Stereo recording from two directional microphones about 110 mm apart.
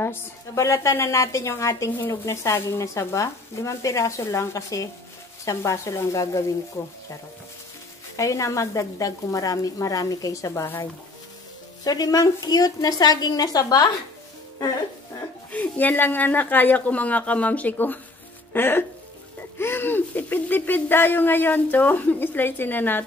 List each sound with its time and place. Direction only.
0.0 s a woman's voice: 20° left (ahead or behind)
8.2 s a woman's voice: 30° left (ahead or behind)
11.8 s a woman's voice: 35° left (ahead or behind)
15.5 s a woman's voice: 15° left (ahead or behind)